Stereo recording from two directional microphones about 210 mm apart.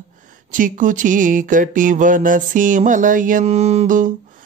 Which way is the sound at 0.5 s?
40° right (ahead or behind).